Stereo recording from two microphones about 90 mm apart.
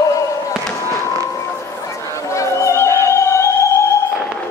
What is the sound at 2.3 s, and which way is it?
Music, 35° left (ahead or behind).